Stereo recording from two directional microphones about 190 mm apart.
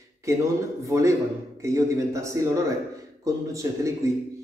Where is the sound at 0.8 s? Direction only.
15° right (ahead or behind).